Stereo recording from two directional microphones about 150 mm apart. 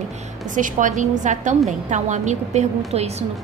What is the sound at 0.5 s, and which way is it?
A woman's voice, 60° right (ahead or behind).